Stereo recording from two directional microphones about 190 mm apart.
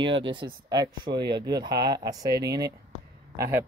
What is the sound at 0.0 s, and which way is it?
Speech, 25° right (ahead or behind).